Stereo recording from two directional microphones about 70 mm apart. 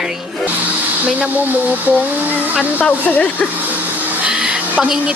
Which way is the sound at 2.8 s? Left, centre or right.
Left.